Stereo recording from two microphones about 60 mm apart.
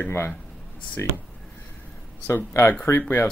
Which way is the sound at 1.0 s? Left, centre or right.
Left.